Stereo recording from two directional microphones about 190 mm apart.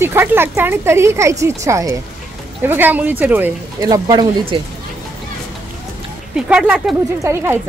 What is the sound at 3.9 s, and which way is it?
Speech, 20° right (ahead or behind).